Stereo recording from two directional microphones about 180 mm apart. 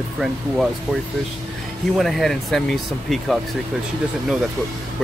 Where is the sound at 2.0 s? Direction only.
Centre (ahead or behind).